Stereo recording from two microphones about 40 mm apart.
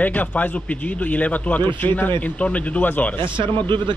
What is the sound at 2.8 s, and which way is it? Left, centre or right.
Speech, left.